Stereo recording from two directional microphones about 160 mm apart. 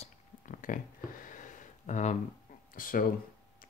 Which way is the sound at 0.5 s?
55° left (ahead or behind).